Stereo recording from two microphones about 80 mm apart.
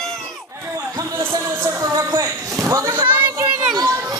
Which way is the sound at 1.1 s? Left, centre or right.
Right.